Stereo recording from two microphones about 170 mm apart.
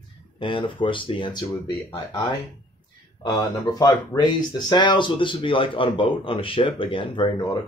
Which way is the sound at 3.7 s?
25° left (ahead or behind).